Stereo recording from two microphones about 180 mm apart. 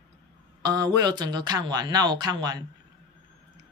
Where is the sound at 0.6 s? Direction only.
20° right (ahead or behind).